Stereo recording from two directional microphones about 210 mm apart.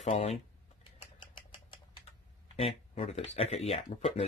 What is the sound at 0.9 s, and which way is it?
Typewriter, 25° left (ahead or behind).